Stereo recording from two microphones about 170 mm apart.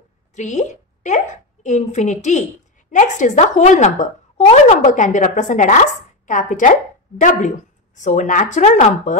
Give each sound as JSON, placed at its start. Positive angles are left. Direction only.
{"t": 0.4, "sound": "a woman's voice", "side_deg": 45}